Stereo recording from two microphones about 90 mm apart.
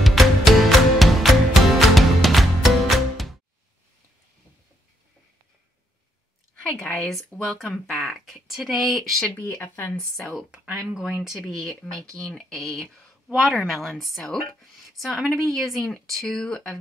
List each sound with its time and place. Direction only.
0.0 s music: centre (ahead or behind)
6.9 s speech: 5° left (ahead or behind)
9.5 s speech: 25° left (ahead or behind)
10.1 s speech: centre (ahead or behind)